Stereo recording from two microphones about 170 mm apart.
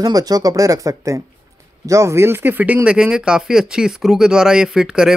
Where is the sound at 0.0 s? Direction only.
20° right (ahead or behind).